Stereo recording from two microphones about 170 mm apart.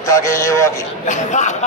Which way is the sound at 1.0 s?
45° left (ahead or behind).